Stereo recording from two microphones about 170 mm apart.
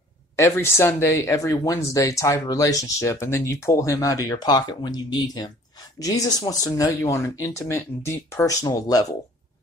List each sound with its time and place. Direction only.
0.4 s speech: 15° left (ahead or behind)